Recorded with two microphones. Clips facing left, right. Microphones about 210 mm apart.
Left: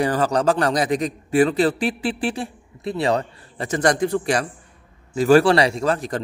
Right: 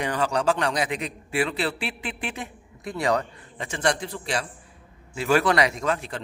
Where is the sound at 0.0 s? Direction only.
40° left (ahead or behind).